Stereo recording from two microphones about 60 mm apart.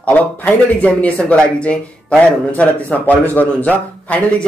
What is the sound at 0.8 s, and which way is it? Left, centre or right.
A man's voice, centre.